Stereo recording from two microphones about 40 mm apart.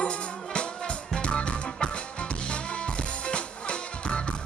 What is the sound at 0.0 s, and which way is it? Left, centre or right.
Music, left.